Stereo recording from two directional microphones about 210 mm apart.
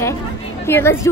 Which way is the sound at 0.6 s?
10° left (ahead or behind).